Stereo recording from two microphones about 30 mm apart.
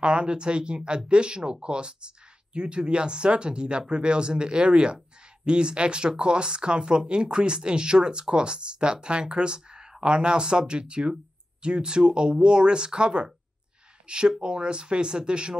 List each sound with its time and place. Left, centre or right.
0.0 s speech: right